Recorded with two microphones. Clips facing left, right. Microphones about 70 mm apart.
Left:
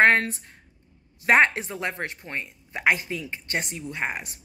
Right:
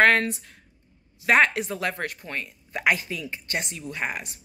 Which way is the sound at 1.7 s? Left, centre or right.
Centre.